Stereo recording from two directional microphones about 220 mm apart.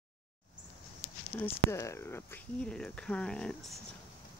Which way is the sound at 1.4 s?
15° left (ahead or behind).